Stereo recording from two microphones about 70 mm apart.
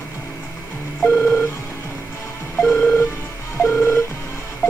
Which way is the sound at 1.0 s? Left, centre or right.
Left.